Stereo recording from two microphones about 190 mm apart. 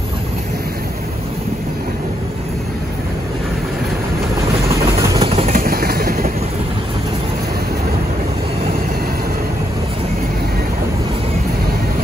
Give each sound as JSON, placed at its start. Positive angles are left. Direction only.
{"t": 4.8, "sound": "vehicle", "side_deg": -15}
{"t": 5.2, "sound": "vehicle", "side_deg": -30}
{"t": 5.6, "sound": "vehicle", "side_deg": -50}